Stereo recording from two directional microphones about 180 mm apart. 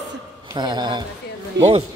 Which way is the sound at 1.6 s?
75° right (ahead or behind).